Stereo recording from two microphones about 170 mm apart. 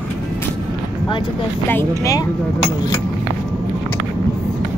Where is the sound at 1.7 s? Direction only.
15° left (ahead or behind).